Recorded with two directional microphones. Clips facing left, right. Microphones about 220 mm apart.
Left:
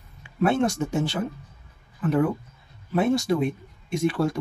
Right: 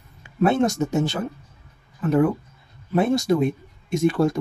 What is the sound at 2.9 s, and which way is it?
Speech, 40° right (ahead or behind).